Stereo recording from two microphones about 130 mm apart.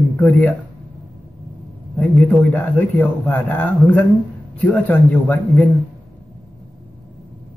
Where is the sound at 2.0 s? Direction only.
10° left (ahead or behind).